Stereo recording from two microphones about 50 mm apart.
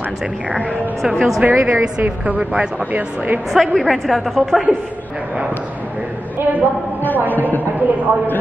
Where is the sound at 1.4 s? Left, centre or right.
Right.